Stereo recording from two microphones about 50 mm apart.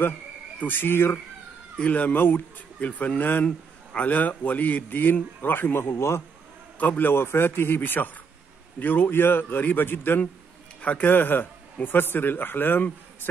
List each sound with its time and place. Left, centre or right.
0.6 s a man's voice: left
1.8 s a man's voice: left
6.8 s a man's voice: left
10.8 s a man's voice: left
11.1 s a man's voice: left